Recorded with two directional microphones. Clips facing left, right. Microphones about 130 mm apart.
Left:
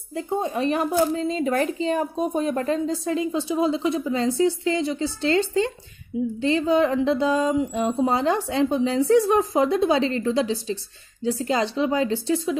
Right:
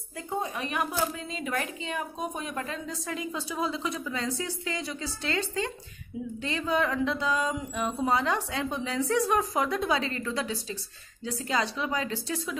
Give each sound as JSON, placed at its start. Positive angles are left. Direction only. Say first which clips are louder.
{"t": 0.1, "sound": "a woman's voice", "louder": "left 7 dB", "side_deg": 25}